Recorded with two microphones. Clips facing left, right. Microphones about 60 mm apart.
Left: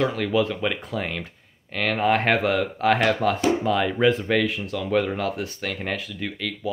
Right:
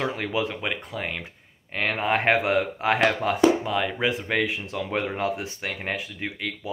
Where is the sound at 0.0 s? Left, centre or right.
Centre.